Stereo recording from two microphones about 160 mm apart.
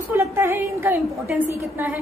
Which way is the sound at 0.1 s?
15° right (ahead or behind).